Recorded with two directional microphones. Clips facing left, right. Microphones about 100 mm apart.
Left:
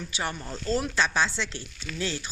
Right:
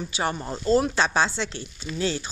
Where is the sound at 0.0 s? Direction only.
30° right (ahead or behind).